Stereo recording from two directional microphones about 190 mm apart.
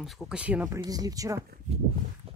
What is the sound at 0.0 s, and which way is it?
Speech, centre (ahead or behind).